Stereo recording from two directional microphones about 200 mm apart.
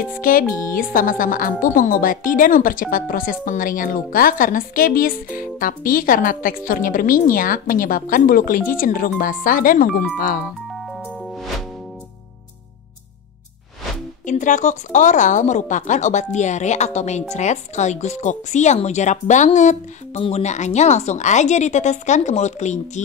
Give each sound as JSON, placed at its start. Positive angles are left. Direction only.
{"t": 0.2, "sound": "a woman's voice", "side_deg": 45}
{"t": 14.2, "sound": "speech", "side_deg": 40}